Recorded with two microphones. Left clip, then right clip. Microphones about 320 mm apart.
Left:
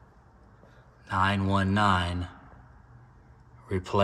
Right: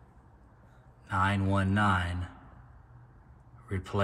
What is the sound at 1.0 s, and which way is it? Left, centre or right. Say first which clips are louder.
Speech: left 3 dB; centre.